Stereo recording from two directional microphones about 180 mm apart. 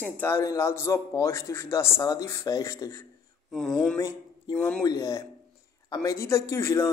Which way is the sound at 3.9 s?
20° left (ahead or behind).